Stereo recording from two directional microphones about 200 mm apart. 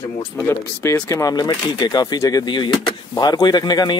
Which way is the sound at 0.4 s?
15° left (ahead or behind).